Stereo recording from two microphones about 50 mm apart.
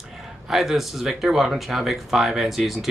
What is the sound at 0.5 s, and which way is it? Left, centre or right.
Speech, centre.